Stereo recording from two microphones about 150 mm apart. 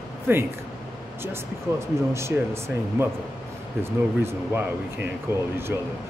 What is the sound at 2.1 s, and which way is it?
Speech, 20° right (ahead or behind).